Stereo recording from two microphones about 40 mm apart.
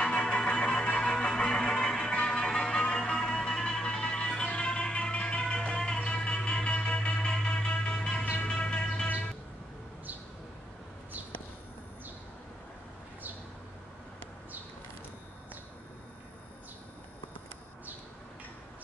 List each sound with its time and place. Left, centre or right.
0.0 s music: left